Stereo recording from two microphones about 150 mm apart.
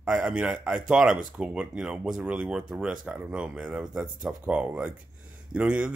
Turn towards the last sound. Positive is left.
turn(degrees=-10)  # may be behind; listen again after turning